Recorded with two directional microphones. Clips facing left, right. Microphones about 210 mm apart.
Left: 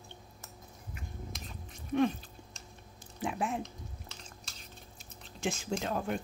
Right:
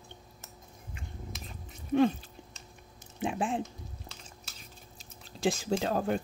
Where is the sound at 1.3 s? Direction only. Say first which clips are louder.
Right 1 dB; 5° right (ahead or behind).